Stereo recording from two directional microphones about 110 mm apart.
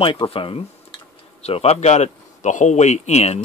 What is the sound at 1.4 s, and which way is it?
Speech, 70° left (ahead or behind).